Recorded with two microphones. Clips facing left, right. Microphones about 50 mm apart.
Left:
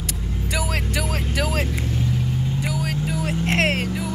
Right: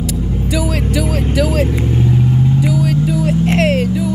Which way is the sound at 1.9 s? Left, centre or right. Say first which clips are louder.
Right 9 dB; right.